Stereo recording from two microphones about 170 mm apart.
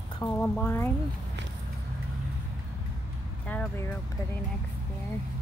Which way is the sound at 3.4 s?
10° left (ahead or behind).